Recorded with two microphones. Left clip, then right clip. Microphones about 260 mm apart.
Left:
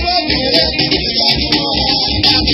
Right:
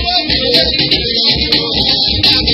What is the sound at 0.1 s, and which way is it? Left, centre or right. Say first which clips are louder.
Music: right 2 dB; right.